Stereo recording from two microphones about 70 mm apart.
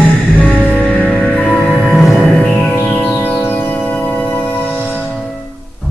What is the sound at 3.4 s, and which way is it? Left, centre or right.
Music, left.